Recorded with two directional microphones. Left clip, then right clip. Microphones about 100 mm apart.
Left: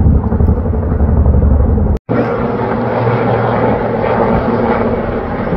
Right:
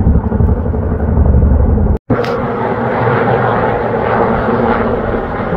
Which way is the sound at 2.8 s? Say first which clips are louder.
Right 3 dB; 30° right (ahead or behind).